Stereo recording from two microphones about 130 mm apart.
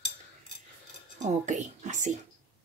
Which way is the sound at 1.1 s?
70° right (ahead or behind).